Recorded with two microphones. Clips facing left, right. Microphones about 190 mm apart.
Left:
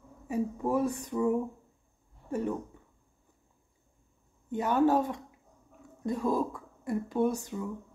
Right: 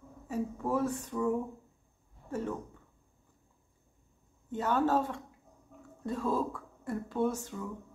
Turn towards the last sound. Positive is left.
turn(degrees=15)  # may be behind; listen again after turning